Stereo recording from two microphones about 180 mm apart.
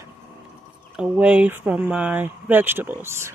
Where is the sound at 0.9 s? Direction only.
5° right (ahead or behind).